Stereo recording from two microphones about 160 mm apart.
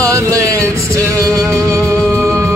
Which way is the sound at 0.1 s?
20° right (ahead or behind).